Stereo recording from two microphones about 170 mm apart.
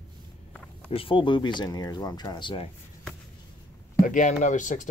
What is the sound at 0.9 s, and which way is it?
Speech, 30° left (ahead or behind).